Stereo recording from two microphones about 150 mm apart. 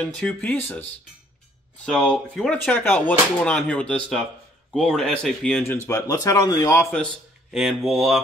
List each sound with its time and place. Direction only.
0.0 s speech: 10° left (ahead or behind)
1.9 s speech: 5° left (ahead or behind)
5.6 s speech: 15° left (ahead or behind)
7.5 s speech: centre (ahead or behind)